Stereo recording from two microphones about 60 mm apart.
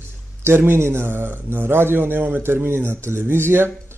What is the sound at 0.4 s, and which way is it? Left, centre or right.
A man's voice, right.